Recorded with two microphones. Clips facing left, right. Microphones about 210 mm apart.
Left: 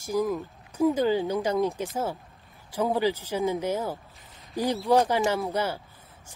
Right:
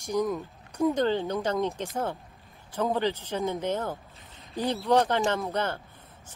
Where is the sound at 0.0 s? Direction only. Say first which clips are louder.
Left 1 dB; 5° left (ahead or behind).